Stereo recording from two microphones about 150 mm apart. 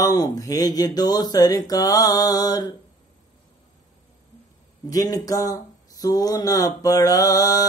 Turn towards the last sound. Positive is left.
turn(degrees=25)  # may be behind; listen again after turning